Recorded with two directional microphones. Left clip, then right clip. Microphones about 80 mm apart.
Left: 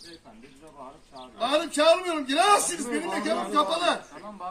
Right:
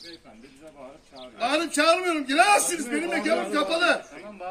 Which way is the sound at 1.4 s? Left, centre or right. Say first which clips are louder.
Even; left.